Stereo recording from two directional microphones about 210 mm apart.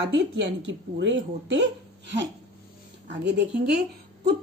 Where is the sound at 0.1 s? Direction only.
60° right (ahead or behind).